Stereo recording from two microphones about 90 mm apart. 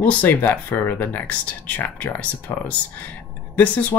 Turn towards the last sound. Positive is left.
turn(degrees=20)  # may be behind; listen again after turning